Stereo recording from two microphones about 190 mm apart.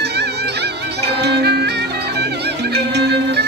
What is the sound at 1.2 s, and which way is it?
Music, 60° right (ahead or behind).